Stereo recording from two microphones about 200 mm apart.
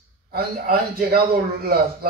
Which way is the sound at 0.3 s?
50° right (ahead or behind).